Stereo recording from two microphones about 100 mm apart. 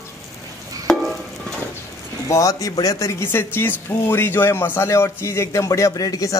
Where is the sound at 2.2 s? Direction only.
35° left (ahead or behind).